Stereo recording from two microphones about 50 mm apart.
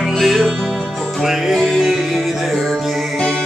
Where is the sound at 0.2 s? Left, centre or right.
Centre.